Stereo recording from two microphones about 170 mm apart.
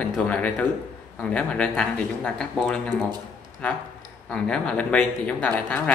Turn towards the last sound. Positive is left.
turn(degrees=10)  # may be behind; listen again after turning